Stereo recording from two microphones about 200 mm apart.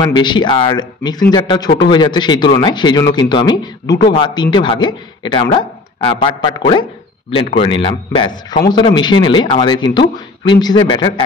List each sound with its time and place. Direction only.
0.0 s speech: 20° left (ahead or behind)